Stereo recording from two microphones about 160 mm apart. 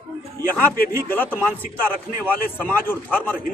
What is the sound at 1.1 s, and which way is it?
A man's voice, 10° left (ahead or behind).